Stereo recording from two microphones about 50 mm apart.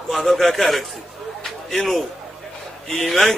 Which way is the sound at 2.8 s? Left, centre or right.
Centre.